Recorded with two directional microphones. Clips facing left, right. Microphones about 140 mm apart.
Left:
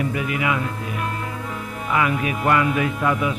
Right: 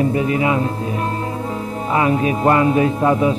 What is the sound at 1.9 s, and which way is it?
Music, 30° right (ahead or behind).